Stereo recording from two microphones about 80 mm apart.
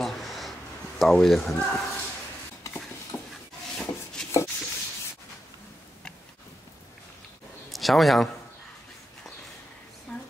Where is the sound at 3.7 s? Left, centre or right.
Centre.